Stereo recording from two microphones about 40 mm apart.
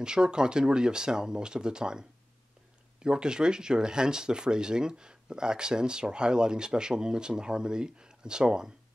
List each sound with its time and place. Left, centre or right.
0.0 s speech: right